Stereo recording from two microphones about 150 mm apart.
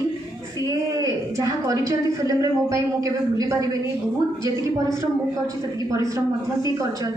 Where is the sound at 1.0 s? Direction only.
20° right (ahead or behind).